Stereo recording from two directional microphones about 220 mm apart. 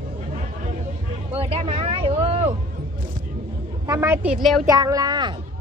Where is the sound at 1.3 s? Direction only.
25° right (ahead or behind).